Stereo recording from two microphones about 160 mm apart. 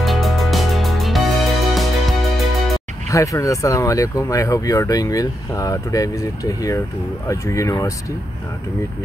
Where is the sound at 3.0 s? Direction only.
20° left (ahead or behind).